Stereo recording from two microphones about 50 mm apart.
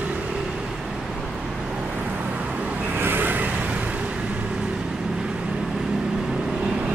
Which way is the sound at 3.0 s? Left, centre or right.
Right.